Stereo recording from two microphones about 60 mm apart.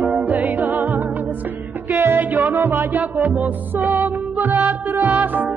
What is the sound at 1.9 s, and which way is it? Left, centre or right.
Music, right.